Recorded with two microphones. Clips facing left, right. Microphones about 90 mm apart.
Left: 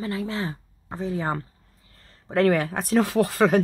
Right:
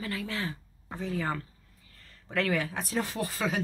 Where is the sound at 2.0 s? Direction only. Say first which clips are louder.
Left 8 dB; 35° left (ahead or behind).